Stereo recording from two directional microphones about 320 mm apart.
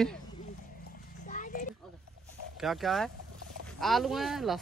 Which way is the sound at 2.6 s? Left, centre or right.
Centre.